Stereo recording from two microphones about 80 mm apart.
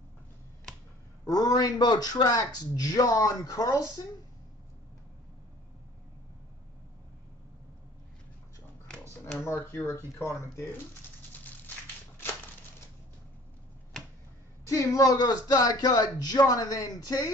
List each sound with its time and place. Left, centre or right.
1.2 s a man's voice: left
9.4 s speech: left
14.7 s speech: left